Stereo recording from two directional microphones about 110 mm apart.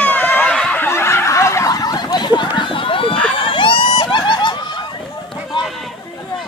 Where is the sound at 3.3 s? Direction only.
50° left (ahead or behind).